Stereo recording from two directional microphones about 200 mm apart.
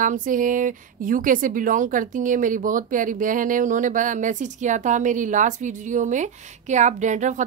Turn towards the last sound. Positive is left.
turn(degrees=-40)  # may be behind; listen again after turning